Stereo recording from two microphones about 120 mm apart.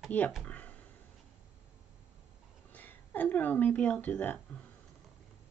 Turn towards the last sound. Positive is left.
turn(degrees=15)  # may be behind; listen again after turning